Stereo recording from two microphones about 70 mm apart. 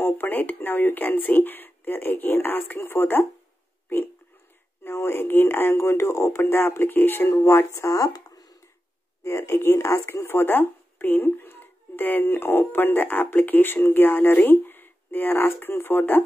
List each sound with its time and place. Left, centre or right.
0.0 s speech: left
7.4 s speech: left
9.2 s speech: left